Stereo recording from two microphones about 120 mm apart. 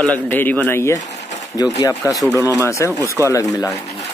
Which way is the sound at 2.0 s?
30° left (ahead or behind).